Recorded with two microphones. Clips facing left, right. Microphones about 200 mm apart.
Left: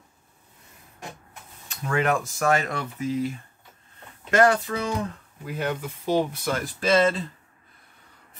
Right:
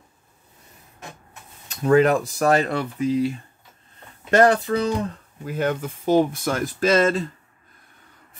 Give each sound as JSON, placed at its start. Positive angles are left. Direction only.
{"t": 1.7, "sound": "speech", "side_deg": -35}
{"t": 4.3, "sound": "speech", "side_deg": -35}
{"t": 5.4, "sound": "speech", "side_deg": -45}